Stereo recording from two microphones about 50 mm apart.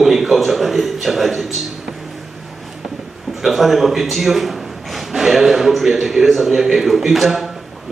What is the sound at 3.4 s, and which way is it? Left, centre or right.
Speech, centre.